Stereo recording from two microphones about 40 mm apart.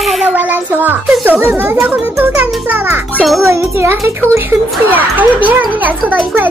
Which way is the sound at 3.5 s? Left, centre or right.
Right.